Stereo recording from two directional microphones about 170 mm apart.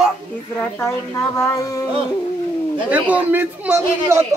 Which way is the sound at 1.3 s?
20° left (ahead or behind).